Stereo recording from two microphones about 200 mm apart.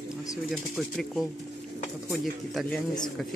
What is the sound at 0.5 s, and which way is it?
Speech, centre (ahead or behind).